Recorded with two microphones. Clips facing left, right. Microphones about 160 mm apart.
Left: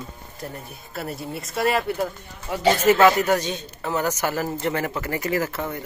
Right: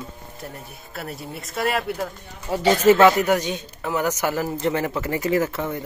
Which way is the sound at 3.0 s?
15° right (ahead or behind).